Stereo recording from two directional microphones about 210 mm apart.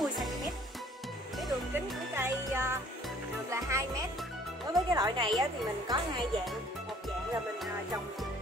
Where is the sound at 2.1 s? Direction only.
10° right (ahead or behind).